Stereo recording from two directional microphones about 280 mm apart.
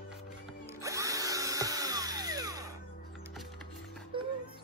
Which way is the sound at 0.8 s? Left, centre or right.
Centre.